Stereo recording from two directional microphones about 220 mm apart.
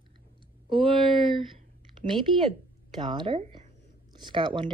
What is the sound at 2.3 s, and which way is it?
Speech, 20° right (ahead or behind).